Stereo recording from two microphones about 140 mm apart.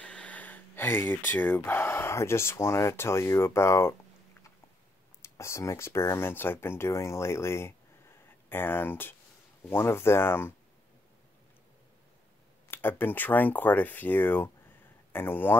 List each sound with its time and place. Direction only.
0.0 s speech: 10° left (ahead or behind)
5.2 s speech: 20° left (ahead or behind)
12.7 s speech: 15° left (ahead or behind)